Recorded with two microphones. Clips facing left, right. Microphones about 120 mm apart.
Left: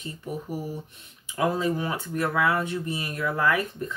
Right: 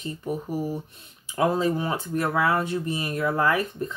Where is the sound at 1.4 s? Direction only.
30° right (ahead or behind).